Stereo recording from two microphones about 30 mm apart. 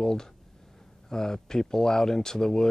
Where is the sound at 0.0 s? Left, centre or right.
Centre.